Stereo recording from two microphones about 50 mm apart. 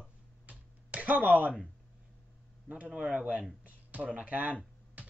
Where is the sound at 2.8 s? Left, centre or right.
Right.